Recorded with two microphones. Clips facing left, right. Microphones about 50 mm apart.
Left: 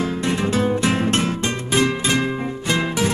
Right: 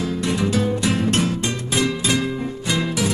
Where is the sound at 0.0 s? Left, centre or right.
Left.